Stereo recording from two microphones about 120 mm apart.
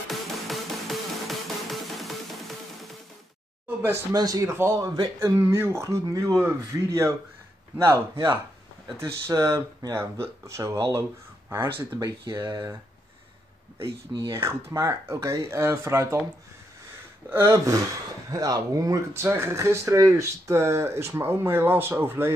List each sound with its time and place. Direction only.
0.1 s music: centre (ahead or behind)
3.6 s a sound: 15° right (ahead or behind)
4.1 s speech: 30° right (ahead or behind)
12.3 s speech: 35° right (ahead or behind)
14.1 s speech: 25° right (ahead or behind)
17.3 s speech: 20° right (ahead or behind)